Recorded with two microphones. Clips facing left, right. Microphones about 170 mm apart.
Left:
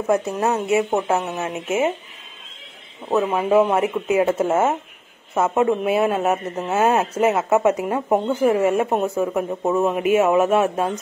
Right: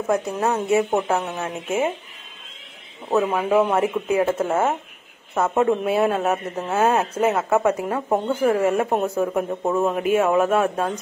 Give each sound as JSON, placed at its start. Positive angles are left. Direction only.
{"t": 0.0, "sound": "speech", "side_deg": 5}
{"t": 3.2, "sound": "speech", "side_deg": 5}